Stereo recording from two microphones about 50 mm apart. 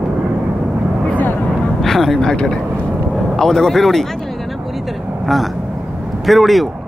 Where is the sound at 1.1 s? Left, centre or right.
Left.